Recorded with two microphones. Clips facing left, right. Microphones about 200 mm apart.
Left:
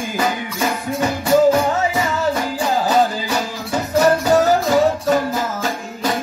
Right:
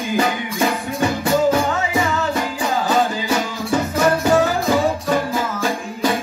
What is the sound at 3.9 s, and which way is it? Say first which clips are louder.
Music: left 3 dB; 40° left (ahead or behind).